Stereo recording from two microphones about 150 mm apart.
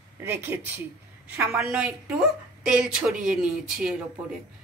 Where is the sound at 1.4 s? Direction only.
Centre (ahead or behind).